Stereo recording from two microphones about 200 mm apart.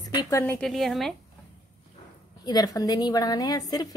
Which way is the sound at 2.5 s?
20° left (ahead or behind).